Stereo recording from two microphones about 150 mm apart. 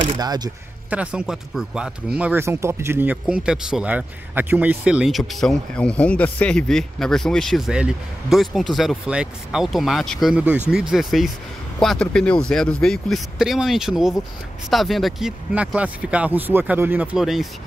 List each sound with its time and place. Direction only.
0.2 s speech: 25° right (ahead or behind)
0.8 s speech: 10° right (ahead or behind)